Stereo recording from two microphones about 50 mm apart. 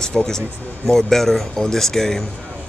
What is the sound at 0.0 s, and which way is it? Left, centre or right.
Speech, centre.